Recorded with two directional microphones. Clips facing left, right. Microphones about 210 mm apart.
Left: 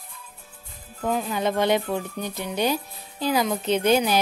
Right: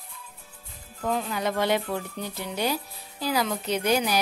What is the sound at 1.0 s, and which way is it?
Speech, 10° left (ahead or behind).